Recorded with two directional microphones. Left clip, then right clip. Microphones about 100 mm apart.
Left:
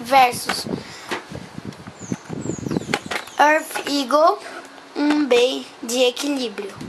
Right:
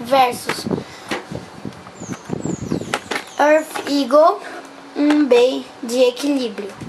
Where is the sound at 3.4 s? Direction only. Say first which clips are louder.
Right 1 dB; 15° left (ahead or behind).